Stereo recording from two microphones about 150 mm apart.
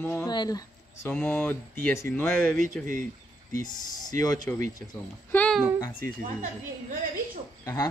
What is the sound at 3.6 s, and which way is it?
Speech, 25° left (ahead or behind).